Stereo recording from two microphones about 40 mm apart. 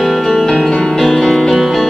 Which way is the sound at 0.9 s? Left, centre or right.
Centre.